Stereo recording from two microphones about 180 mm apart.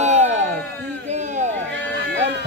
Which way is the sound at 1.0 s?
40° right (ahead or behind).